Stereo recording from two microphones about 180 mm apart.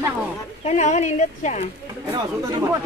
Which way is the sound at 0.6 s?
40° left (ahead or behind).